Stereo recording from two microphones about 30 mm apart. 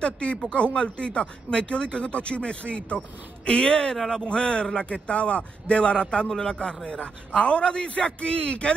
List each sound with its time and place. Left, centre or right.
0.0 s a man's voice: left
6.2 s a man's voice: centre
7.0 s a man's voice: left